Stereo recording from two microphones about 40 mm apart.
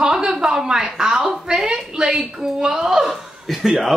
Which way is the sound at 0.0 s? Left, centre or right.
Centre.